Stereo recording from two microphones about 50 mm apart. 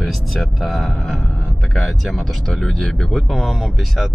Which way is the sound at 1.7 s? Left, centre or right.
Centre.